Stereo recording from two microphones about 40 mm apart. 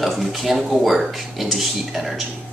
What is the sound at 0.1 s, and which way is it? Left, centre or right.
Speech, centre.